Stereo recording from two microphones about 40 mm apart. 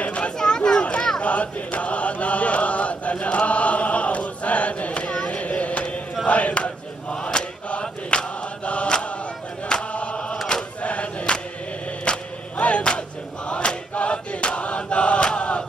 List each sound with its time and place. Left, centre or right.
0.0 s chatter: left
0.4 s a sound: centre
1.2 s mantra: left
6.2 s battle cry: left
7.8 s chant: centre
10.8 s choir: left
12.0 s music: left
13.5 s chant: left